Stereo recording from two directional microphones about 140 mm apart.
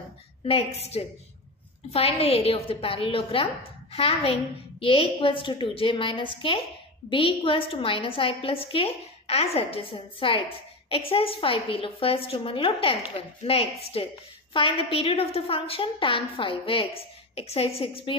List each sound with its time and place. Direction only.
0.5 s a woman's voice: 45° left (ahead or behind)